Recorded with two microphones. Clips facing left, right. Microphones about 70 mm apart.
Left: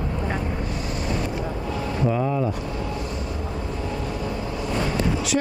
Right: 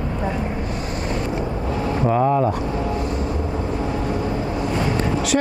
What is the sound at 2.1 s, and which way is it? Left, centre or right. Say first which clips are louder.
Speech: right 6 dB; right.